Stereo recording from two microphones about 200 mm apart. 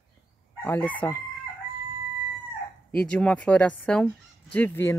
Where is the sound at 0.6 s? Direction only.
10° left (ahead or behind).